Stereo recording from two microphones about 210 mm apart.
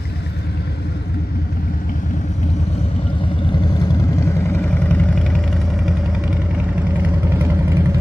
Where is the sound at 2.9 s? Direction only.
25° left (ahead or behind).